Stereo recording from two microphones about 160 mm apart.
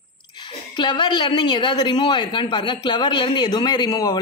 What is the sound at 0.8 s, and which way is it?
Speech, 30° left (ahead or behind).